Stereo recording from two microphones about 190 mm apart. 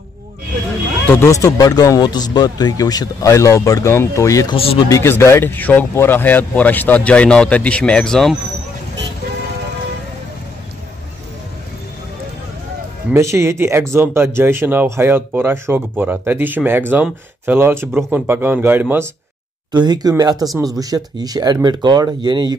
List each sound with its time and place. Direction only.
1.1 s speech: 15° left (ahead or behind)
4.6 s speech: 30° left (ahead or behind)
4.8 s speech: 15° left (ahead or behind)
13.1 s speech: 15° right (ahead or behind)
19.7 s speech: 20° right (ahead or behind)